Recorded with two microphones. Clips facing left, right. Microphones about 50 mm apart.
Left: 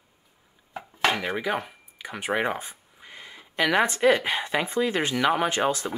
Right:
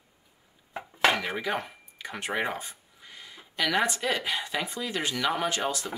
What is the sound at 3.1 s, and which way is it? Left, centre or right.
Speech, left.